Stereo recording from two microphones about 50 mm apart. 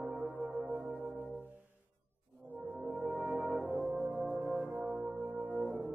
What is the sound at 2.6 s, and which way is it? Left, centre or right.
Music, right.